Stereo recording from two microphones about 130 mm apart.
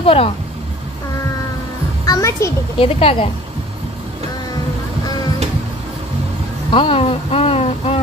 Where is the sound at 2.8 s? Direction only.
50° left (ahead or behind).